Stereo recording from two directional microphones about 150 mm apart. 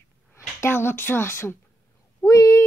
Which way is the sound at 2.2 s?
20° left (ahead or behind).